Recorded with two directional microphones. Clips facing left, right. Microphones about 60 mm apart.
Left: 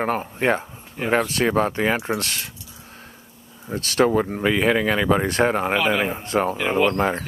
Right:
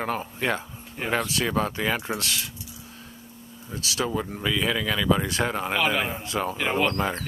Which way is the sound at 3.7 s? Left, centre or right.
Left.